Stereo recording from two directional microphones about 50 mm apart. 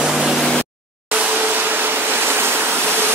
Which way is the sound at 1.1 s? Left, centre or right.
Right.